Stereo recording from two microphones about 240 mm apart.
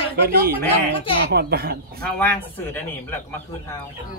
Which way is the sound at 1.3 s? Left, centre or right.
Right.